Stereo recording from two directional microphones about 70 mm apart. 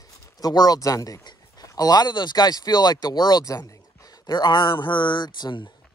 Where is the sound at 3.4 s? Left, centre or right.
Left.